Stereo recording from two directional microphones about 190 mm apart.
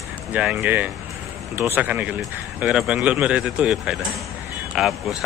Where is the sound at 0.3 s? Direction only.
5° right (ahead or behind).